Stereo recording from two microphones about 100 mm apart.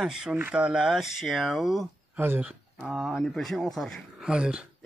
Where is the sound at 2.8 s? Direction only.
5° right (ahead or behind).